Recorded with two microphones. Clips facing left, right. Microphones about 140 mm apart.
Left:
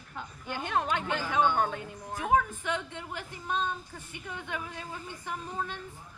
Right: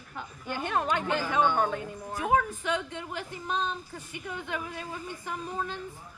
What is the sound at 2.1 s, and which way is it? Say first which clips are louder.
Speech: even; 10° right (ahead or behind).